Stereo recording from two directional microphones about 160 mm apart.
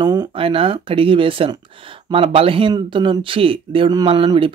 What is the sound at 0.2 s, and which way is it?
Speech, 35° right (ahead or behind).